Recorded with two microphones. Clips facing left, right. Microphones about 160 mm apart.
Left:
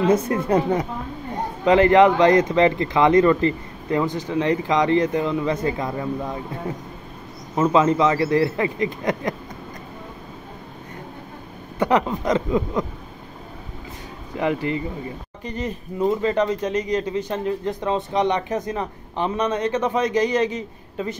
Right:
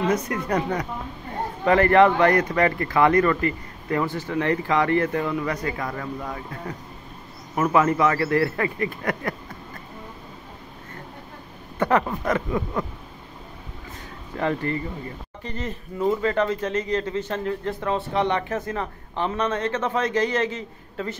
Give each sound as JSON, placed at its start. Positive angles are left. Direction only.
{"t": 0.1, "sound": "speech", "side_deg": 25}
{"t": 7.5, "sound": "speech", "side_deg": 20}
{"t": 11.8, "sound": "speech", "side_deg": 20}
{"t": 14.3, "sound": "speech", "side_deg": 15}